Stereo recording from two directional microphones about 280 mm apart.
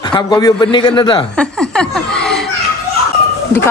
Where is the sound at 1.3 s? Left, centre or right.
Centre.